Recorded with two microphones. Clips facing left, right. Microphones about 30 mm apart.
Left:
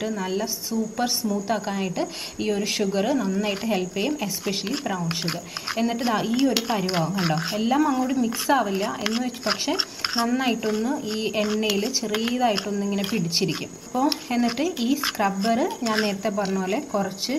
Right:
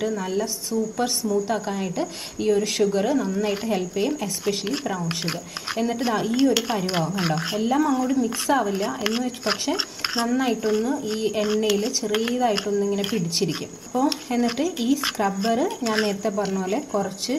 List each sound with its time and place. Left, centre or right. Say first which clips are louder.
0.0 s a woman's voice: right 2 dB; centre
5.8 s a woman's voice: even; centre
8.8 s a woman's voice: right 1 dB; centre
10.6 s a woman's voice: right 2 dB; centre
16.2 s a woman's voice: even; centre